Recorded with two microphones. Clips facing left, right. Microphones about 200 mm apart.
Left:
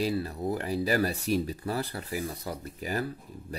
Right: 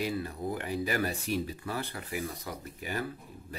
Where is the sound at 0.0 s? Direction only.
35° left (ahead or behind).